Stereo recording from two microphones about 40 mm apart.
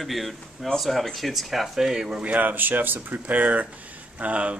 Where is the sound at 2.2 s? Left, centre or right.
Right.